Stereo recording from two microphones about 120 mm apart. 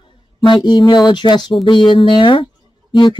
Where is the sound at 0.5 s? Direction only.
40° left (ahead or behind).